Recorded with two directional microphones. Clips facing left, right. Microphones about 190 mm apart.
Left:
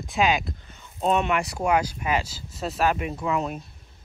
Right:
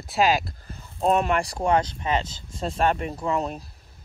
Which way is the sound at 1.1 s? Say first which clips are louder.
Right 1 dB; 35° right (ahead or behind).